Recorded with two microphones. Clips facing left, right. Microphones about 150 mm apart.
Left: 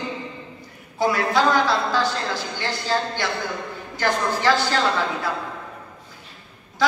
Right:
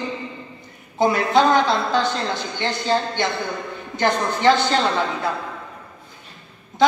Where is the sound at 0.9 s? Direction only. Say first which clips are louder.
Right 3 dB; 20° right (ahead or behind).